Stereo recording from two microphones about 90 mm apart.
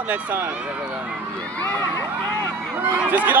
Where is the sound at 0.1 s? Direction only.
20° right (ahead or behind).